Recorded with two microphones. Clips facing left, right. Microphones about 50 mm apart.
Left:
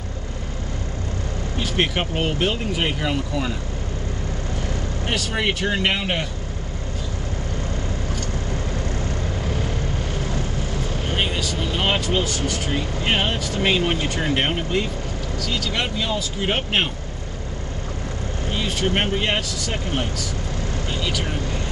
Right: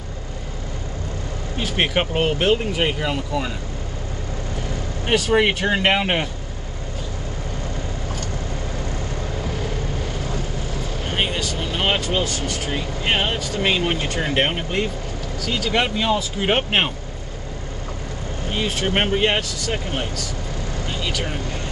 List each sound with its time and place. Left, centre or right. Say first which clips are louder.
1.6 s speech: right 2 dB; centre
5.0 s speech: right 7 dB; centre
11.1 s vehicle: right 1 dB; centre
12.6 s speech: right 1 dB; centre
18.7 s speech: right 1 dB; centre